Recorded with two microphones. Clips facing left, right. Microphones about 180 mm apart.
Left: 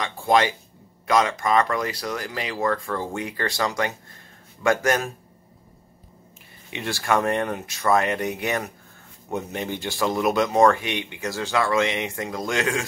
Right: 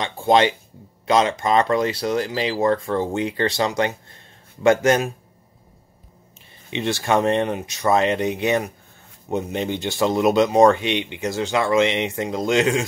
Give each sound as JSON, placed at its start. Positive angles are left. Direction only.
{"t": 0.0, "sound": "speech", "side_deg": -25}
{"t": 6.7, "sound": "speech", "side_deg": -20}